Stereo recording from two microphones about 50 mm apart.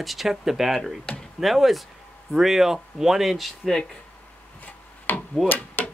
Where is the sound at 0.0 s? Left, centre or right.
Centre.